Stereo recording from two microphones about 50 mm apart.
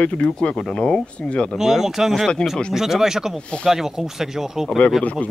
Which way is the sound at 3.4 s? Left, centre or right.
Left.